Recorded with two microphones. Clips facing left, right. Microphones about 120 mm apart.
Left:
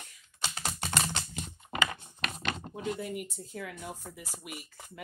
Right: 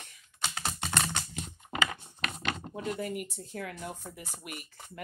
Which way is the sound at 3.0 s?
50° right (ahead or behind).